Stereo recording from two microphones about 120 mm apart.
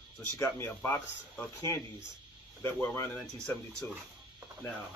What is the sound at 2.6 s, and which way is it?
Speech, 25° left (ahead or behind).